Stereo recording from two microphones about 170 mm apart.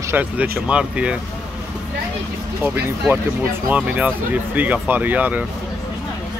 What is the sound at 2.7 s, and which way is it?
Speech, 10° right (ahead or behind).